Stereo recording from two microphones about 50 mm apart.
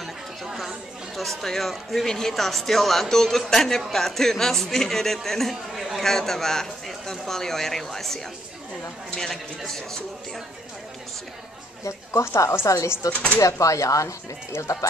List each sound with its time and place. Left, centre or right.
0.5 s a sound: centre
2.0 s a man's voice: centre
11.8 s speech: left